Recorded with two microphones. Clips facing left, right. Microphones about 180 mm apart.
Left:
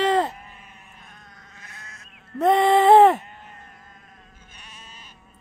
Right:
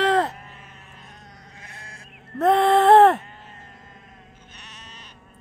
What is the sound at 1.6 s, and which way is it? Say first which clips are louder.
Sheep: right 1 dB; 30° right (ahead or behind).